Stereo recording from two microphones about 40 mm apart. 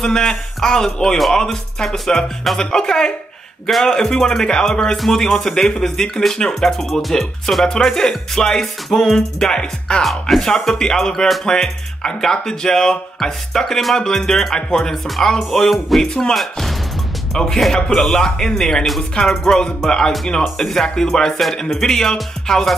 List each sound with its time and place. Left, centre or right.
0.0 s speech: centre
2.2 s speech: centre
2.6 s speech: centre
6.9 s speech: centre
9.5 s music: left
10.0 s speech: centre
15.7 s speech: centre
16.1 s speech: centre
16.3 s speech: centre
17.3 s speech: centre